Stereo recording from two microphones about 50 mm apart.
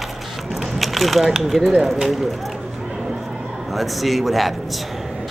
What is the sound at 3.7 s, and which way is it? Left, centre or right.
Speech, centre.